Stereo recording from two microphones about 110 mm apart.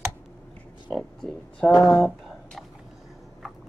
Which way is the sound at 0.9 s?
Centre (ahead or behind).